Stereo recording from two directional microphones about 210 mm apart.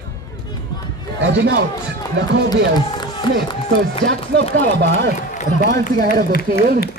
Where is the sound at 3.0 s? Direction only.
20° left (ahead or behind).